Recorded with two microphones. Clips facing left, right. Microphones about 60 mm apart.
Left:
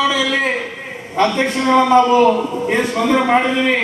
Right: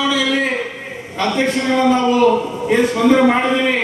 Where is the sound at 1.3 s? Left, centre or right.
Centre.